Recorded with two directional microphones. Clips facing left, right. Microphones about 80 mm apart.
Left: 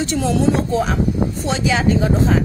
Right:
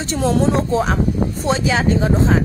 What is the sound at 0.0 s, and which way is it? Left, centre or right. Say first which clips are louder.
A woman's voice: even; right.